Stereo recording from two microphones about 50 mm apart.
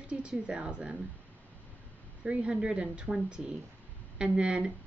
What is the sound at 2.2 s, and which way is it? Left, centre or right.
A woman's voice, right.